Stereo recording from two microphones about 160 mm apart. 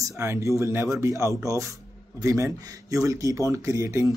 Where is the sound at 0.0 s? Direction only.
15° right (ahead or behind).